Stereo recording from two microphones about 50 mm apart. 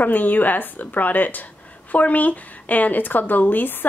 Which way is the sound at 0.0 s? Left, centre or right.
Left.